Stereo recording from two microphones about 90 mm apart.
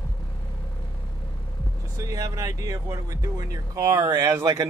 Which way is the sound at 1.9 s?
40° right (ahead or behind).